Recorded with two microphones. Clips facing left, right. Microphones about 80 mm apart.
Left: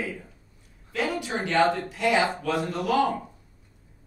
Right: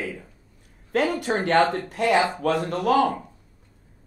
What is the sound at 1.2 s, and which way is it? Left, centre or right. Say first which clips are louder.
A woman's voice: right 1 dB; right.